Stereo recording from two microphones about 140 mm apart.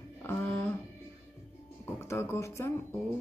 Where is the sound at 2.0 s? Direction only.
20° left (ahead or behind).